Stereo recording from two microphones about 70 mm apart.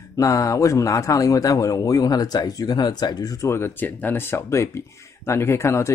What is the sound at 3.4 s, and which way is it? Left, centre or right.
A man's voice, left.